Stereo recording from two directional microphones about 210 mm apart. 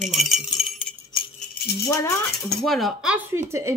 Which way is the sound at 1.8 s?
15° left (ahead or behind).